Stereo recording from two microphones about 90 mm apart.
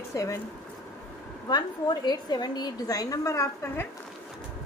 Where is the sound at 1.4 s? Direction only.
55° left (ahead or behind); by 3.8 s 30° left (ahead or behind).